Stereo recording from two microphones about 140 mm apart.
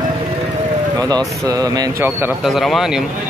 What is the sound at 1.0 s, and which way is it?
Speech, 30° right (ahead or behind).